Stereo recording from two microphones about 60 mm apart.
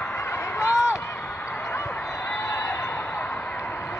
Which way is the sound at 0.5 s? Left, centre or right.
Left.